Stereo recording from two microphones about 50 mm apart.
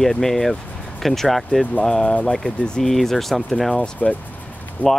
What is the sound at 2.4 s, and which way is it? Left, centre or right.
Speech, centre.